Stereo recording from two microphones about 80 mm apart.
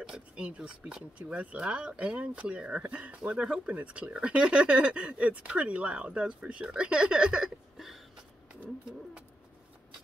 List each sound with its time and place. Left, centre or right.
0.0 s speech: centre